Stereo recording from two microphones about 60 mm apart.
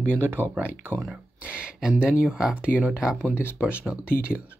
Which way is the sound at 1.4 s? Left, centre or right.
Right.